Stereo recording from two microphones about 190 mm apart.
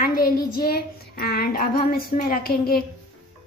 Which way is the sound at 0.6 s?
55° left (ahead or behind).